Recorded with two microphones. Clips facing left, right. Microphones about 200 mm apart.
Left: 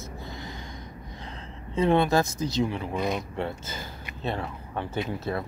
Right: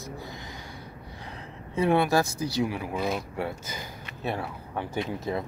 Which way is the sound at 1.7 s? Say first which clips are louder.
Left 1 dB; 10° right (ahead or behind).